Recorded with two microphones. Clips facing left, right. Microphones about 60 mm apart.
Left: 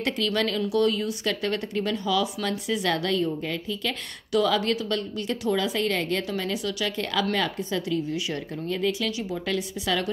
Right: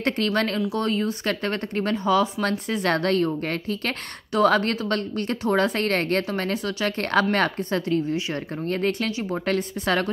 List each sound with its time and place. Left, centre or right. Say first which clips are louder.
0.0 s a woman's voice: right 2 dB; right